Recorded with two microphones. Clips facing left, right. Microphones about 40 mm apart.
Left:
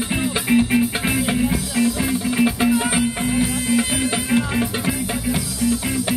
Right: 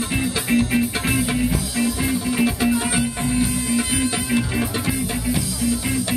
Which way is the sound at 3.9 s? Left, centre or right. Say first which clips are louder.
Left 1 dB; centre.